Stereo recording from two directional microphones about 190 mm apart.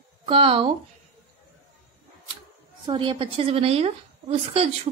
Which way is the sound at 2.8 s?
25° right (ahead or behind).